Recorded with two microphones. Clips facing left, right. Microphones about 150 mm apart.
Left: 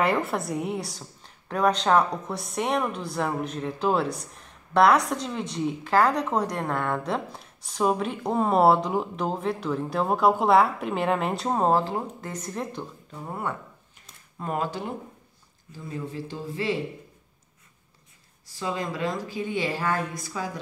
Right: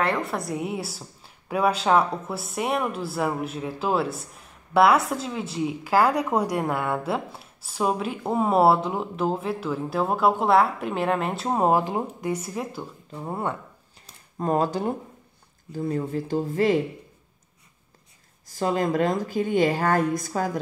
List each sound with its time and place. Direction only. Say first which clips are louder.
0.0 s a woman's voice: left 1 dB; centre (ahead or behind)
13.2 s speech: right 3 dB; 25° right (ahead or behind)
14.4 s speech: right 6 dB; 40° right (ahead or behind)
15.7 s speech: right 8 dB; 50° right (ahead or behind)
18.5 s speech: right 7 dB; 50° right (ahead or behind)